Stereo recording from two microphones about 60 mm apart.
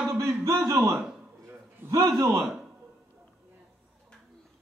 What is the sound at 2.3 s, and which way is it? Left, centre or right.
Speech, centre.